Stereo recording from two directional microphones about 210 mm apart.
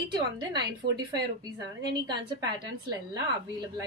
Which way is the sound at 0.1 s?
20° right (ahead or behind).